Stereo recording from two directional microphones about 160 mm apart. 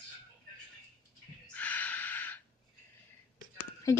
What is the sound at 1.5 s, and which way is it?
Snort, 10° left (ahead or behind).